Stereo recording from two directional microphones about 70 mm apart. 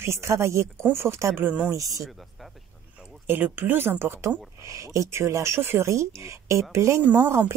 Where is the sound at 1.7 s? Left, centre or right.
Right.